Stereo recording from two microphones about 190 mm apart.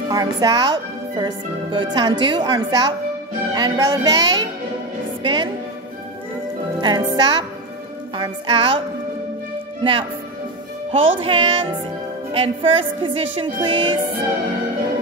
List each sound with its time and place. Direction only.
0.1 s a woman's voice: 20° right (ahead or behind)
5.2 s music: 25° right (ahead or behind)
6.8 s a woman's voice: 25° right (ahead or behind)
10.9 s a woman's voice: 30° right (ahead or behind)